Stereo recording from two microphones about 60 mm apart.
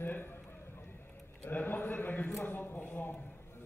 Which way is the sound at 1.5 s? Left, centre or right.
Left.